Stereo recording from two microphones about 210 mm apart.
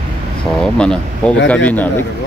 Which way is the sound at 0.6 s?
5° left (ahead or behind).